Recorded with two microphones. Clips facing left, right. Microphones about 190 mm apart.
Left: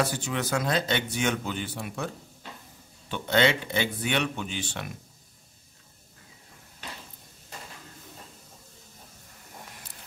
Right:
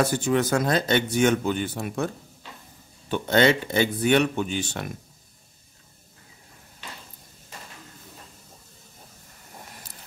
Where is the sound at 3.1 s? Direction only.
45° right (ahead or behind).